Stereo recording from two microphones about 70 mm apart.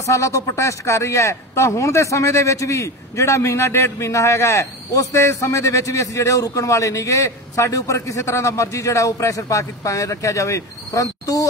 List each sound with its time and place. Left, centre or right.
0.0 s speech: left